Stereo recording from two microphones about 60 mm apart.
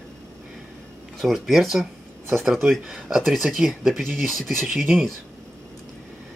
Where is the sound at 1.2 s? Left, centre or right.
Centre.